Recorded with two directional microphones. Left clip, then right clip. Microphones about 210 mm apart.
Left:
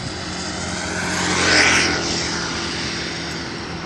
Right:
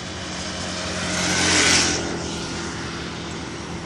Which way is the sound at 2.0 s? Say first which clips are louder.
Left 5 dB; 15° left (ahead or behind).